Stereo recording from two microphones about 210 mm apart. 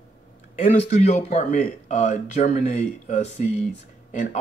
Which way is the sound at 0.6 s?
35° left (ahead or behind).